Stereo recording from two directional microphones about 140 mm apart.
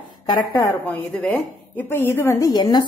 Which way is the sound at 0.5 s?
15° left (ahead or behind).